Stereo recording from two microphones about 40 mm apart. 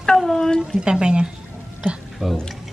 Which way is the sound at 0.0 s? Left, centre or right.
Centre.